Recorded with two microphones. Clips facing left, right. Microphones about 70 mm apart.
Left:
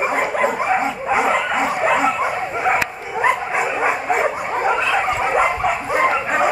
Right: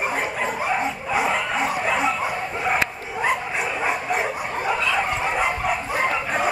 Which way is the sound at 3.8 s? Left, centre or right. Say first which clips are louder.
Left 4 dB; left.